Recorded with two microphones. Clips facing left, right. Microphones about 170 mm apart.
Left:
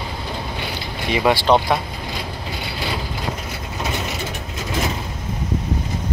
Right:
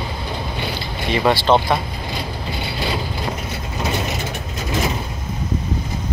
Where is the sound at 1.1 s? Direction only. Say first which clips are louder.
Even; 10° left (ahead or behind).